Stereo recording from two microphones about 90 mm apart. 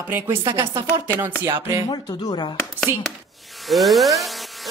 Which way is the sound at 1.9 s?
55° left (ahead or behind).